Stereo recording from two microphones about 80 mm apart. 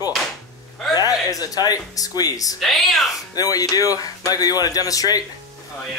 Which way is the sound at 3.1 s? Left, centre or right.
Left.